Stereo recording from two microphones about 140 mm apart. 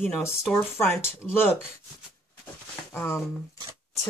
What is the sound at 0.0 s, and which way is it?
Speech, 10° left (ahead or behind).